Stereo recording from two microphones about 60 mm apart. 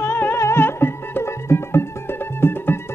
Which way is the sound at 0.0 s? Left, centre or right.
Left.